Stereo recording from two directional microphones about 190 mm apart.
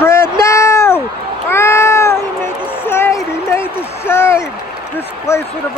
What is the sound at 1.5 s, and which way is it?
Cat, 15° left (ahead or behind).